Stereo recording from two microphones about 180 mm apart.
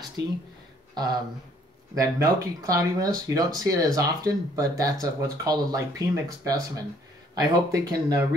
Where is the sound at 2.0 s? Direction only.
20° right (ahead or behind).